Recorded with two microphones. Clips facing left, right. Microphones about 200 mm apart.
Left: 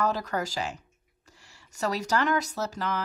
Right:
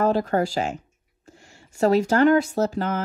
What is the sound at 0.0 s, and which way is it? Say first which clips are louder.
Speech: right 7 dB; 40° right (ahead or behind).